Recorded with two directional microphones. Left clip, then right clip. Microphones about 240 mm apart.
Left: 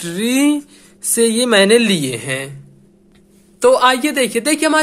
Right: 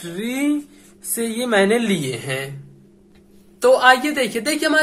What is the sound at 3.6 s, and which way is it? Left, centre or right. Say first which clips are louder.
Speech: left 1 dB; left.